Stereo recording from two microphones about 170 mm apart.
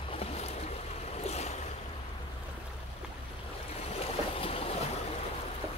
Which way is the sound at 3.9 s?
35° left (ahead or behind).